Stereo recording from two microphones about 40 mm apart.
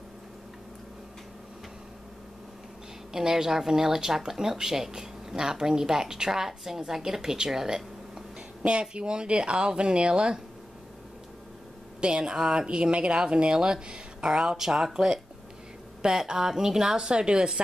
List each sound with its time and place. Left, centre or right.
3.1 s speech: centre
8.6 s speech: right
12.0 s speech: right